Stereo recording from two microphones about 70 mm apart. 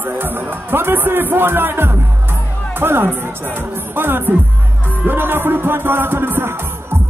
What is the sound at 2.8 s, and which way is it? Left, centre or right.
Speech, right.